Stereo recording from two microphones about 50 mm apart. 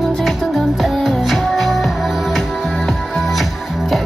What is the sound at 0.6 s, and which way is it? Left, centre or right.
Music, centre.